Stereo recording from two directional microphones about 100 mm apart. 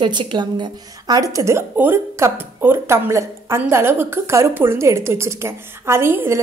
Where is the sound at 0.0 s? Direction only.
50° right (ahead or behind).